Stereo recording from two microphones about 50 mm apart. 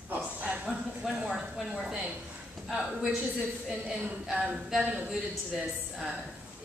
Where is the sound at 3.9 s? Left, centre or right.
Centre.